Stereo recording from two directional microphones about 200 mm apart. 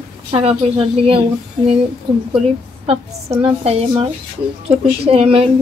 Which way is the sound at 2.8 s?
30° right (ahead or behind).